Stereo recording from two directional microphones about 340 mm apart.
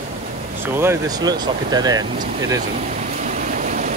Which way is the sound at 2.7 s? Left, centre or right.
Right.